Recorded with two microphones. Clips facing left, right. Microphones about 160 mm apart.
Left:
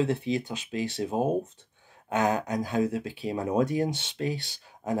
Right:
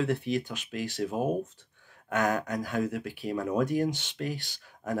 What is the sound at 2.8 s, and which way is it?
Speech, 25° left (ahead or behind).